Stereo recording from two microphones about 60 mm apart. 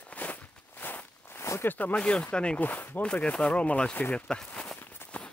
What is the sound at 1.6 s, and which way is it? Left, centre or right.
Speech, left.